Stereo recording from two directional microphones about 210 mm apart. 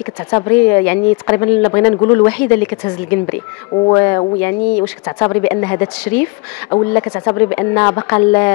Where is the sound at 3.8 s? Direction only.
15° left (ahead or behind).